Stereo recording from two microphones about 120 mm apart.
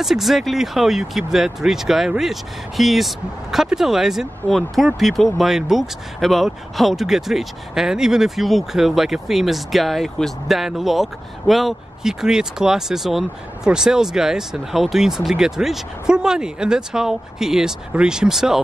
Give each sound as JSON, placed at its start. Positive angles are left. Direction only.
{"t": 0.0, "sound": "speech", "side_deg": 0}